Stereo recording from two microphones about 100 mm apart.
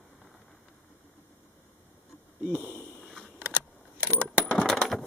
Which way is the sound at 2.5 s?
15° right (ahead or behind).